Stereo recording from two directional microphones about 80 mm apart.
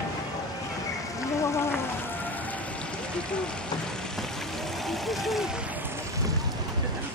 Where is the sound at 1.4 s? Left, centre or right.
Left.